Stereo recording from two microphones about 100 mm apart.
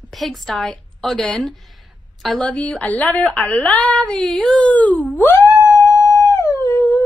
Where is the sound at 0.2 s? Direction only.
5° left (ahead or behind).